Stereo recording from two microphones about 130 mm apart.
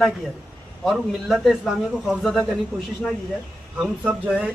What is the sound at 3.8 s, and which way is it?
Speech, 10° right (ahead or behind).